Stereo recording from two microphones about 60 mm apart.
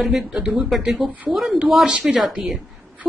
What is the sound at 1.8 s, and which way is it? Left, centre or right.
Speech, centre.